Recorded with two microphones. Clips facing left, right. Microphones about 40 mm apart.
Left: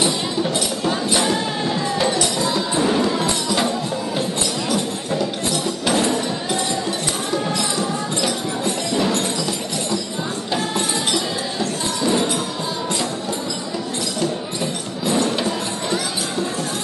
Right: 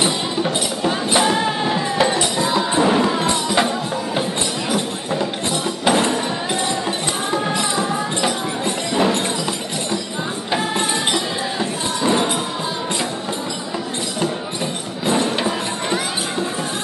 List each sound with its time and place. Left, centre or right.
0.0 s music: centre
12.0 s music: right
15.2 s music: right